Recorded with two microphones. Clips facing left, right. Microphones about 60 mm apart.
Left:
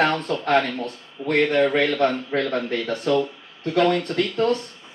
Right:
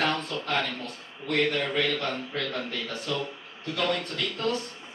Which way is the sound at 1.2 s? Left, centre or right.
Left.